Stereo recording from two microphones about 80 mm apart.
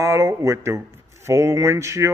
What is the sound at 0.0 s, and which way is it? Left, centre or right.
Speech, right.